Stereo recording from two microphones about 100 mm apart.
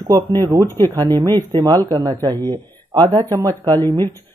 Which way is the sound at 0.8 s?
40° right (ahead or behind).